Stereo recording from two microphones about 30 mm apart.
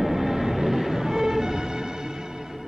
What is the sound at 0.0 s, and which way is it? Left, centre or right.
Music, centre.